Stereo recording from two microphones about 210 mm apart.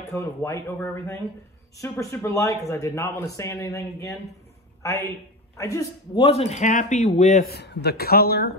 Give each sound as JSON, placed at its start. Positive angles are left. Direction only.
{"t": 0.1, "sound": "speech", "side_deg": 15}
{"t": 6.2, "sound": "a man's voice", "side_deg": 30}
{"t": 7.4, "sound": "speech", "side_deg": 50}